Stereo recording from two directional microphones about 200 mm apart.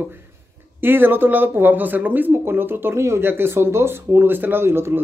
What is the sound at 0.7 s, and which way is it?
A man's voice, 10° right (ahead or behind).